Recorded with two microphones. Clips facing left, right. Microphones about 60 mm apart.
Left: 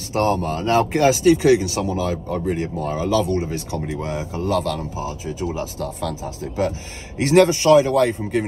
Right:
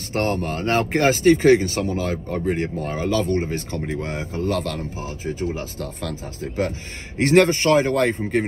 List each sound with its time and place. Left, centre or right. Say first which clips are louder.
0.1 s a man's voice: left 3 dB; right